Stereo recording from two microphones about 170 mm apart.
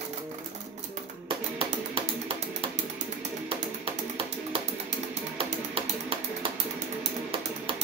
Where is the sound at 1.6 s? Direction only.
35° right (ahead or behind).